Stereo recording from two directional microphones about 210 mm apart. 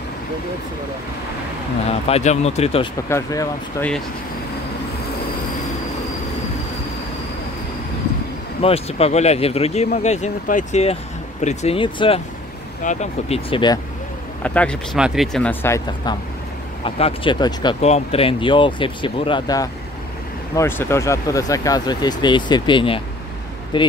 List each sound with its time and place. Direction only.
2.0 s speech: 30° left (ahead or behind)
3.1 s speech: 15° left (ahead or behind)
8.5 s speech: 30° left (ahead or behind)
14.4 s speech: 5° left (ahead or behind)
16.8 s speech: 25° left (ahead or behind)